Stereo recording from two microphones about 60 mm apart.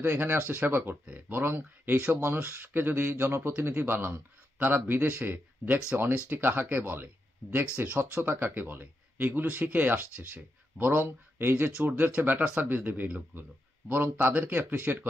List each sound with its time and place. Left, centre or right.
0.0 s speech: right